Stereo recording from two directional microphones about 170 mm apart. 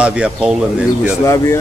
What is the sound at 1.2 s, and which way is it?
Speech, 20° left (ahead or behind).